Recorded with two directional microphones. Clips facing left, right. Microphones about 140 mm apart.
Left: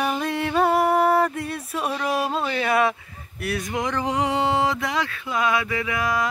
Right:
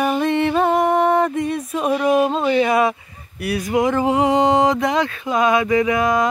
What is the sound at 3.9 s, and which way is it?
Mantra, 10° right (ahead or behind).